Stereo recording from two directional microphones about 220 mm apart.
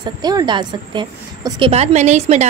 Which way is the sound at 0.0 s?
20° right (ahead or behind).